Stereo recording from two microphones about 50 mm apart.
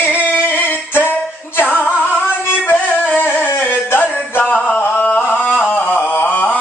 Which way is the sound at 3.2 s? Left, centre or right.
Left.